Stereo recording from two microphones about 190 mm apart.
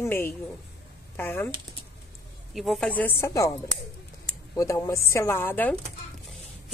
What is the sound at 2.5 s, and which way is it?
A woman's voice, centre (ahead or behind).